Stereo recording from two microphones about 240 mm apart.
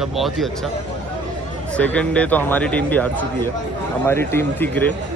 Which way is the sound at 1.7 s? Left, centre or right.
Centre.